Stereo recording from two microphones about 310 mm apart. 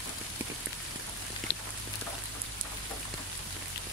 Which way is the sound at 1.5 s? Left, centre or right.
Left.